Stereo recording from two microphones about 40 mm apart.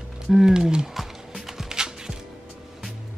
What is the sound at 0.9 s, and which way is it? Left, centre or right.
Music, centre.